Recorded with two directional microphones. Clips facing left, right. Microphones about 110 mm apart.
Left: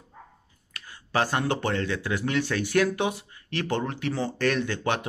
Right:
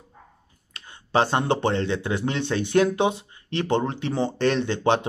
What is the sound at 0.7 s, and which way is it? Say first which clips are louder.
Speech: right 4 dB; 25° right (ahead or behind).